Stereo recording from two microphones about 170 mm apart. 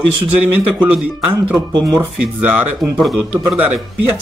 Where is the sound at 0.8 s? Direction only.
10° right (ahead or behind).